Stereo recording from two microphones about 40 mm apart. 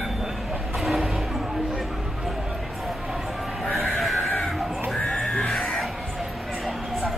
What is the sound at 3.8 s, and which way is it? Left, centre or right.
Neigh, centre.